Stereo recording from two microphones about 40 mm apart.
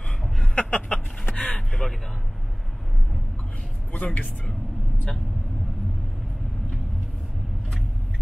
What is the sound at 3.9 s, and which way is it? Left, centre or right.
Speech, left.